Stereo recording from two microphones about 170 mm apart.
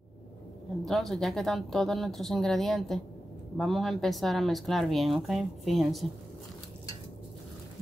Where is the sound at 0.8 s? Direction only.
Centre (ahead or behind).